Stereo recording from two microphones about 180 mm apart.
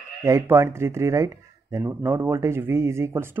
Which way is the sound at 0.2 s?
15° right (ahead or behind).